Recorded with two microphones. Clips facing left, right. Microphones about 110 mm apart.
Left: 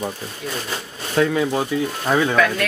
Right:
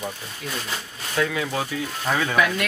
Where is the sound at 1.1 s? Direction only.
35° left (ahead or behind).